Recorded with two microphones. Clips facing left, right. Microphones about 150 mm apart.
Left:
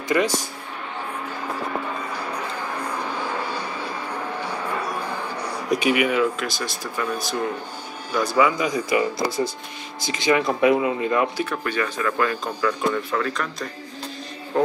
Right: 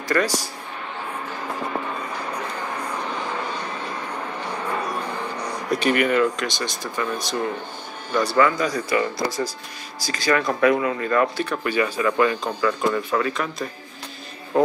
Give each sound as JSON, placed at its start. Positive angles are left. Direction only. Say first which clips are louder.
{"t": 0.1, "sound": "speech", "louder": "left 1 dB", "side_deg": 15}
{"t": 5.5, "sound": "speech", "louder": "left 1 dB", "side_deg": 10}
{"t": 8.6, "sound": "speech", "louder": "left 1 dB", "side_deg": 20}
{"t": 11.5, "sound": "speech", "louder": "right 3 dB", "side_deg": -5}